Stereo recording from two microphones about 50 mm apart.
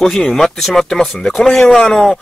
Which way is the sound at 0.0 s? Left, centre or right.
Centre.